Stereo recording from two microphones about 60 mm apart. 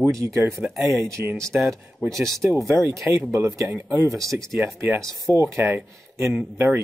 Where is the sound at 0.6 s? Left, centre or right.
Centre.